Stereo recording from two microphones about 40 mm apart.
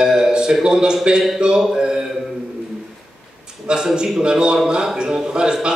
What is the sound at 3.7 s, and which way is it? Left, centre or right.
A man's voice, right.